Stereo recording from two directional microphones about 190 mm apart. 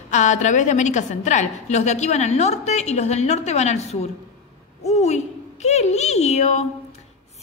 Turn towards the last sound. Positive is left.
turn(degrees=35)  # may be behind; listen again after turning